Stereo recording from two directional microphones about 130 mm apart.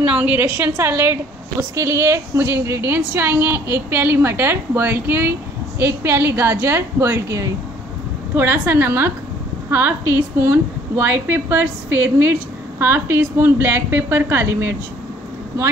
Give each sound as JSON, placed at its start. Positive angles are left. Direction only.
{"t": 0.0, "sound": "a woman's voice", "side_deg": -10}